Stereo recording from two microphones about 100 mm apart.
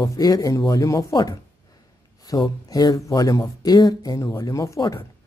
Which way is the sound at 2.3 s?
35° left (ahead or behind).